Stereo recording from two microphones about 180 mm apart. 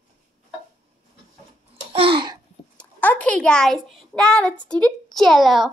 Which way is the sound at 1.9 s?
30° right (ahead or behind).